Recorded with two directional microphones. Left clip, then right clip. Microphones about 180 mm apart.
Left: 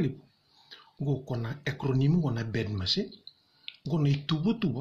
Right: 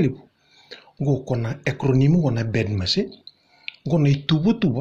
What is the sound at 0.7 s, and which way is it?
Speech, 30° right (ahead or behind).